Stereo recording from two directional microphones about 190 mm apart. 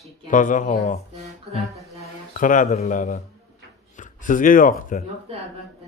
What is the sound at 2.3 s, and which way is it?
Speech, 45° left (ahead or behind).